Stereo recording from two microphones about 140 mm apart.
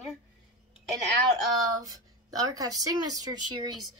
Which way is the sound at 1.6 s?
25° right (ahead or behind).